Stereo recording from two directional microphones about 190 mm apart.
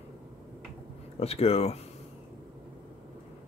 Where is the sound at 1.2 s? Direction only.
30° left (ahead or behind).